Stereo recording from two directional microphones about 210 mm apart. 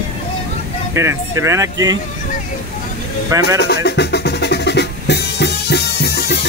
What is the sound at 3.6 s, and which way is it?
Music, 50° left (ahead or behind).